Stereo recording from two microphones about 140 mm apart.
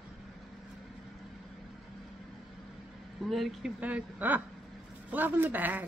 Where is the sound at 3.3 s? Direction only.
Centre (ahead or behind).